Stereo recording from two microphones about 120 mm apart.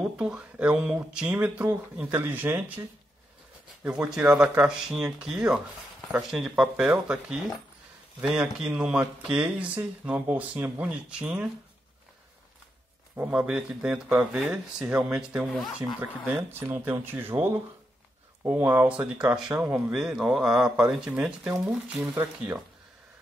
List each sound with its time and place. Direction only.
0.0 s speech: 10° right (ahead or behind)
3.8 s speech: 5° right (ahead or behind)
13.1 s speech: 10° right (ahead or behind)
16.0 s speech: 15° right (ahead or behind)
18.9 s speech: 10° right (ahead or behind)